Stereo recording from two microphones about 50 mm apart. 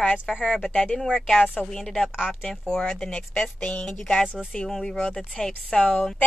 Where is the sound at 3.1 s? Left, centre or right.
Centre.